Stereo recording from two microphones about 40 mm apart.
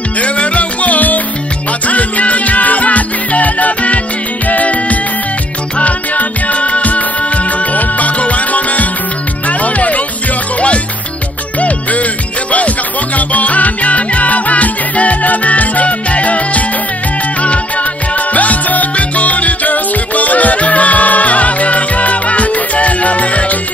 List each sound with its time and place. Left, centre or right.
0.2 s music: left
11.6 s music: left
18.1 s music: left